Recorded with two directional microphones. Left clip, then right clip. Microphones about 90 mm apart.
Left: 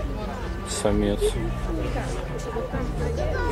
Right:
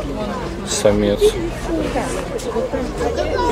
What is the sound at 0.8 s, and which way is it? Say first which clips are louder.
Speech: right 9 dB; 45° left (ahead or behind).